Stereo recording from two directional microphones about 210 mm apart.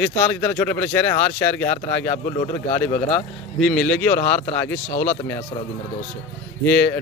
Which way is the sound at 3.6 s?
5° left (ahead or behind).